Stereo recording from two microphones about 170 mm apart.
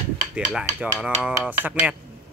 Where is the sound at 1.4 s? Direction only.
10° right (ahead or behind).